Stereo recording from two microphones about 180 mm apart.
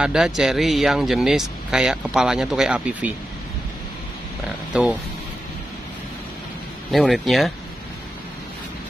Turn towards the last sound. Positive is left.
turn(degrees=0)  # may be behind; listen again after turning